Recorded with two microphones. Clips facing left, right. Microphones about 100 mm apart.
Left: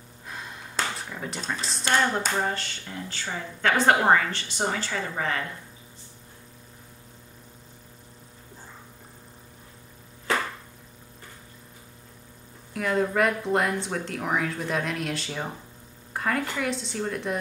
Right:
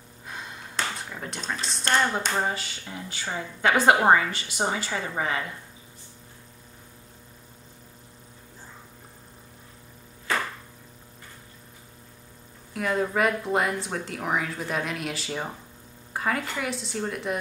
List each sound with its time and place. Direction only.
0.3 s a sound: centre (ahead or behind)
1.1 s speech: centre (ahead or behind)
12.7 s speech: centre (ahead or behind)